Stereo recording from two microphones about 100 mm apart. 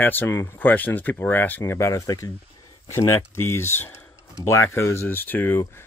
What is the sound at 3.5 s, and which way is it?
Speech, 25° left (ahead or behind).